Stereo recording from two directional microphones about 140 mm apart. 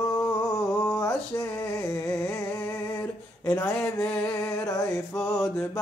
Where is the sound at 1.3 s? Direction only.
20° left (ahead or behind).